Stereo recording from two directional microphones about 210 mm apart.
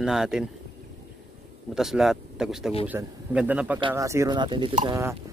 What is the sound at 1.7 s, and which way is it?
A man's voice, centre (ahead or behind).